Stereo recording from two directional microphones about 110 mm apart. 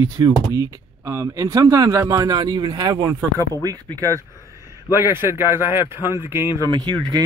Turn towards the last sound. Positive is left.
turn(degrees=-40)  # may be behind; listen again after turning